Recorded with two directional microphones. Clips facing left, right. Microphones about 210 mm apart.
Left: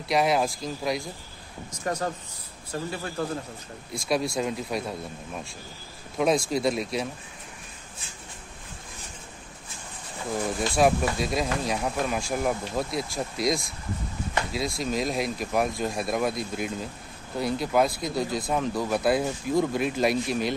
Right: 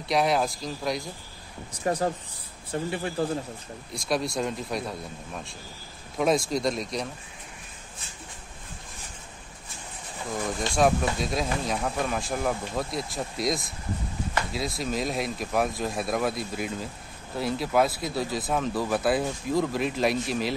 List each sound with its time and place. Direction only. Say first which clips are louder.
0.1 s speech: left 1 dB; centre (ahead or behind)
1.9 s a man's voice: right 3 dB; 30° right (ahead or behind)
3.9 s speech: left 1 dB; centre (ahead or behind)
6.1 s speech: even; centre (ahead or behind)
10.8 s speech: left 1 dB; centre (ahead or behind)